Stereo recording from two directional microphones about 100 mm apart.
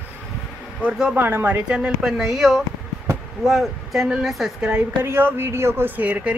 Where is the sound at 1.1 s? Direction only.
20° right (ahead or behind).